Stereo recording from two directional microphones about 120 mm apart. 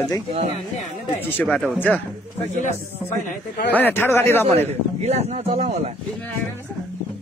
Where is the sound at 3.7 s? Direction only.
15° left (ahead or behind).